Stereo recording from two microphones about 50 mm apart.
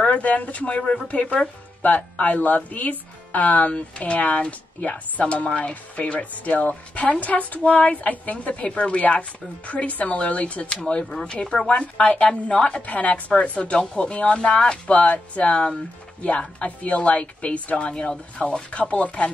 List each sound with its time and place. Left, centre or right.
0.0 s speech: left